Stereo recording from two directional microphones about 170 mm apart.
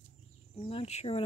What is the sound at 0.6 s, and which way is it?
Speech, 35° left (ahead or behind).